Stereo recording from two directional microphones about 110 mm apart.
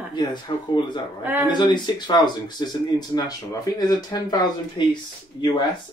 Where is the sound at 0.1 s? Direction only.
45° left (ahead or behind).